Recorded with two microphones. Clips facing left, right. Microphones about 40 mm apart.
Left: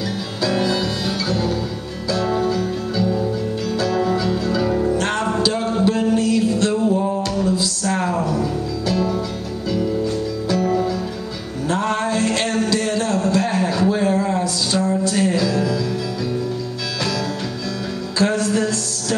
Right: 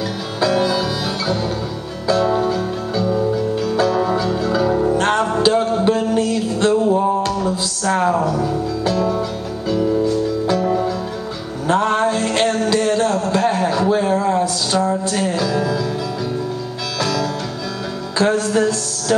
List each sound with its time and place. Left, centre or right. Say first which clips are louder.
0.4 s music: right 4 dB; right
2.2 s music: right 2 dB; centre
3.9 s music: right 1 dB; centre
4.6 s music: right 4 dB; centre
4.9 s music: right 3 dB; right
8.3 s music: right 2 dB; centre
10.4 s music: right 2 dB; right
11.6 s a sound: right 4 dB; right
15.2 s music: even; centre
18.1 s music: right 2 dB; right